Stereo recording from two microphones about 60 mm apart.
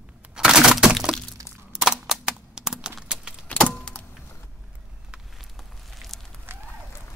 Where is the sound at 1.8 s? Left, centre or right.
Centre.